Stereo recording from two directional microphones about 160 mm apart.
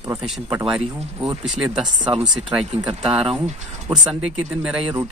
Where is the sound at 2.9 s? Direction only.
40° right (ahead or behind).